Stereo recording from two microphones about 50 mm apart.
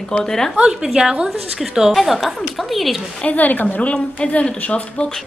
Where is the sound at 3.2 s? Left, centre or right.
Left.